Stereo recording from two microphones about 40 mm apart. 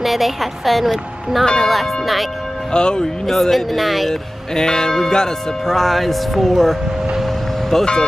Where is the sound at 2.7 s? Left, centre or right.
Left.